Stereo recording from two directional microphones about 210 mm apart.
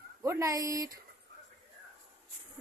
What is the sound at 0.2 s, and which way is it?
Speech, 15° right (ahead or behind).